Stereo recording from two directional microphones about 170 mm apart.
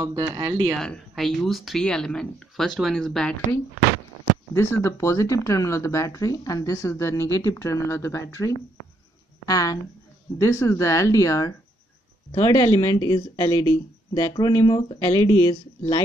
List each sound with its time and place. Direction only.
0.0 s speech: 20° right (ahead or behind)
0.7 s speech: 5° left (ahead or behind)
4.6 s speech: 15° left (ahead or behind)
12.6 s speech: 25° left (ahead or behind)